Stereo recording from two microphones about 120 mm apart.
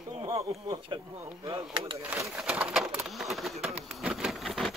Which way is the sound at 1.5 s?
40° right (ahead or behind).